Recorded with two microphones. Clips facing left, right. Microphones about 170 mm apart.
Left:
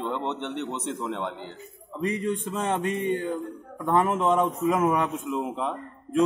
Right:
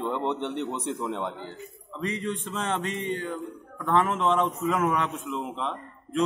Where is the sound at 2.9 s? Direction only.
55° left (ahead or behind).